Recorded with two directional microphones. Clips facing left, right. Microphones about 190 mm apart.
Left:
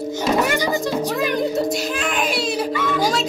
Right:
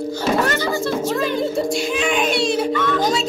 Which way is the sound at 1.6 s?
Centre (ahead or behind).